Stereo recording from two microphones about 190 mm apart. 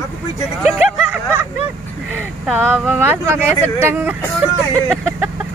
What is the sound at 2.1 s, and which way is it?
Speech, 10° right (ahead or behind).